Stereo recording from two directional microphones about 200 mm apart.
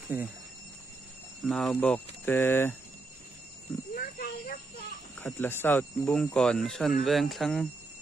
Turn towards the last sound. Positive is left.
turn(degrees=0)  # may be behind; listen again after turning